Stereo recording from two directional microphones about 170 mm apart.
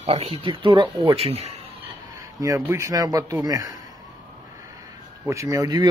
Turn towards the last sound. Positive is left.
turn(degrees=-20)  # may be behind; listen again after turning